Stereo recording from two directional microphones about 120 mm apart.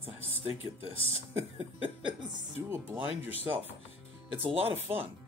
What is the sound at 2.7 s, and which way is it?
Speech, 15° right (ahead or behind).